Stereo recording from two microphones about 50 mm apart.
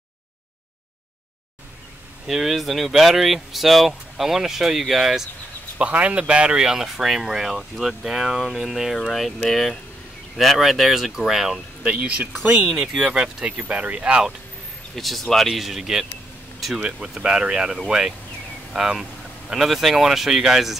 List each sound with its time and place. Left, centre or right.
2.2 s speech: centre
5.8 s speech: right; by 8.4 s centre
8.4 s speech: centre
11.8 s speech: right
12.6 s speech: centre
13.0 s speech: right
15.0 s speech: centre